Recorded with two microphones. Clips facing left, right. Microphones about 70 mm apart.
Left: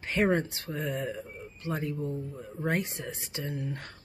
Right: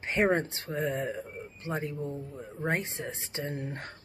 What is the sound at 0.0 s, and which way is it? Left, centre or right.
Speech, right.